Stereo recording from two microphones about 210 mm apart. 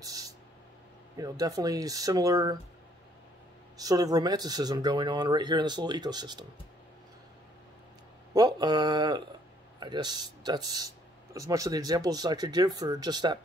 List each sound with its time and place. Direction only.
0.0 s a sound: 15° right (ahead or behind)
1.1 s speech: 15° right (ahead or behind)
3.7 s speech: 15° right (ahead or behind)
8.3 s speech: 20° right (ahead or behind)